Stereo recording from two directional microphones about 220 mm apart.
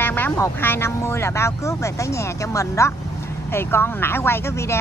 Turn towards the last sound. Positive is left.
turn(degrees=10)  # may be behind; listen again after turning